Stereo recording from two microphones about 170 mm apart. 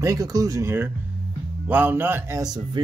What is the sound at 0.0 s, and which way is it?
Speech, 20° right (ahead or behind).